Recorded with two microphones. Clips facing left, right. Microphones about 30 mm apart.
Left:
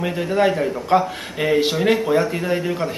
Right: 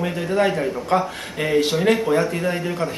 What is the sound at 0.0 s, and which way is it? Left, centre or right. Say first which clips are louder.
Speech: left 2 dB; centre.